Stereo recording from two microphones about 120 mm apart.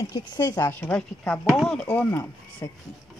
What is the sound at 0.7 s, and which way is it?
A woman's voice, 15° left (ahead or behind).